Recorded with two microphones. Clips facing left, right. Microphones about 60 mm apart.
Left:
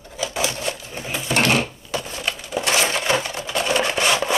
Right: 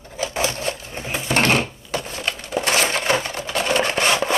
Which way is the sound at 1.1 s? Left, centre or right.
Right.